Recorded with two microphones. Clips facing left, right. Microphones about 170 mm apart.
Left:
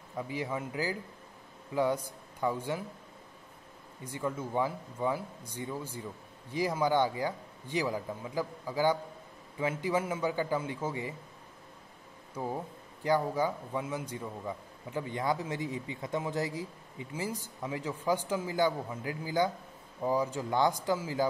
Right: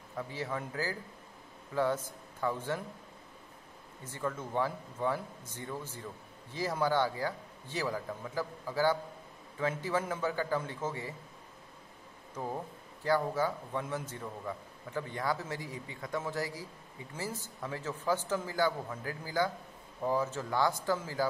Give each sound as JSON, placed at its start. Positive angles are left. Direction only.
{"t": 0.2, "sound": "speech", "side_deg": 15}
{"t": 4.0, "sound": "speech", "side_deg": 15}
{"t": 12.4, "sound": "speech", "side_deg": 10}